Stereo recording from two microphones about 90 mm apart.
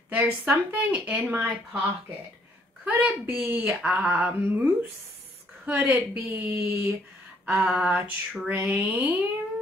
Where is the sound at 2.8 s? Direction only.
15° right (ahead or behind).